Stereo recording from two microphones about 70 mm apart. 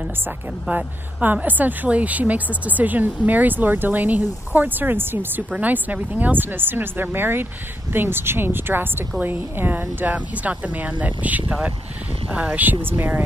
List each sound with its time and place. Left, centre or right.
0.7 s speech: right
12.7 s speech: right